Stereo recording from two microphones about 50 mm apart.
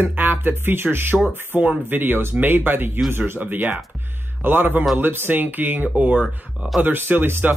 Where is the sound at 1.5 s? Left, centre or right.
Right.